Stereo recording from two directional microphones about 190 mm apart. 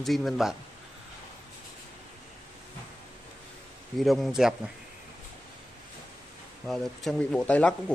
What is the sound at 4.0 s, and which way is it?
Speech, centre (ahead or behind).